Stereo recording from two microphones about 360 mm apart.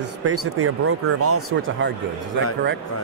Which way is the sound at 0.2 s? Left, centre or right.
Right.